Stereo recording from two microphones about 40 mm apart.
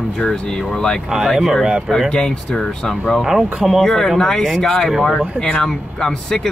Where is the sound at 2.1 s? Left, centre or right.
Centre.